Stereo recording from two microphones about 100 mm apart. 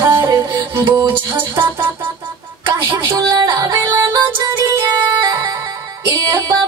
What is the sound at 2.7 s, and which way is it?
Speech, 50° right (ahead or behind).